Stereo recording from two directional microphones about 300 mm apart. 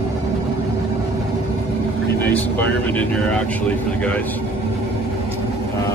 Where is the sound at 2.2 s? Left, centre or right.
Centre.